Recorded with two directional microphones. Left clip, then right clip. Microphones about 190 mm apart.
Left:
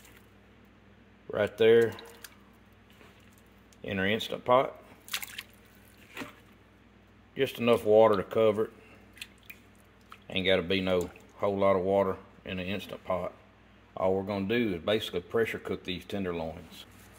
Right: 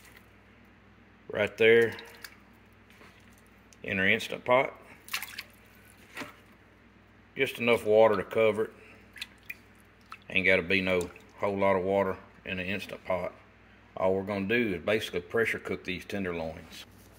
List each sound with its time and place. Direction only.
1.3 s speech: 10° left (ahead or behind)
3.8 s speech: 15° left (ahead or behind)
7.3 s speech: 25° left (ahead or behind)
10.0 s speech: 15° left (ahead or behind)